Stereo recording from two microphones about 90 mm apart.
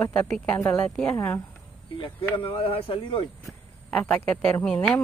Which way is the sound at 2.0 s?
75° left (ahead or behind).